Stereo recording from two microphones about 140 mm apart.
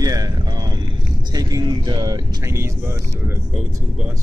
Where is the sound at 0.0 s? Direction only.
25° right (ahead or behind).